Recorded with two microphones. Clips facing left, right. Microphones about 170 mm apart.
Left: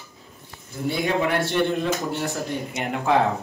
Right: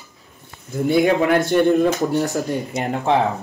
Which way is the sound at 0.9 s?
50° right (ahead or behind).